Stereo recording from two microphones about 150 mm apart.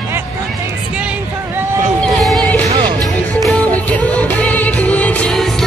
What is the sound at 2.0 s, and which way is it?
Music, centre (ahead or behind).